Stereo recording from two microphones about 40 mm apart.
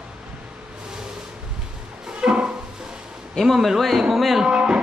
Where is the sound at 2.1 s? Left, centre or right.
Right.